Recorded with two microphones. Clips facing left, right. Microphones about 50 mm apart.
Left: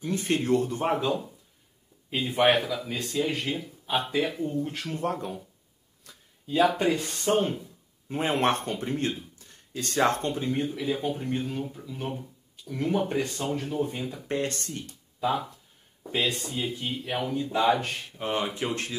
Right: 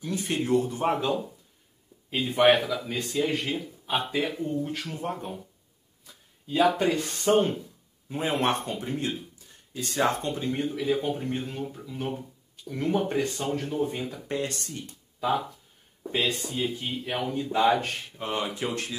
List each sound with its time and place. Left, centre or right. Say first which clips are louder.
0.0 s speech: left 2 dB; left
0.8 s a man's voice: right 1 dB; centre
6.0 s a sound: left 1 dB; left
6.6 s a man's voice: even; centre
8.1 s speech: left 1 dB; left
10.5 s a man's voice: right 1 dB; centre
14.3 s speech: left 2 dB; left
15.1 s a man's voice: right 1 dB; centre
18.2 s speech: left 1 dB; left